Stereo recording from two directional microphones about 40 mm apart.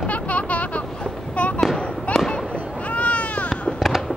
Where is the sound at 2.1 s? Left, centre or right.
Left.